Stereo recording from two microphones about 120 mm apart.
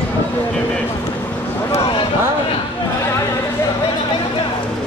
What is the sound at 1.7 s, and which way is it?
Speech, 50° left (ahead or behind).